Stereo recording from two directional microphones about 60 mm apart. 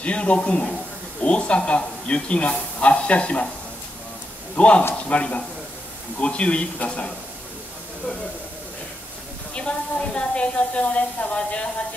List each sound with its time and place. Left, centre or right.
0.0 s speech: left
4.6 s speech: centre
9.5 s speech: centre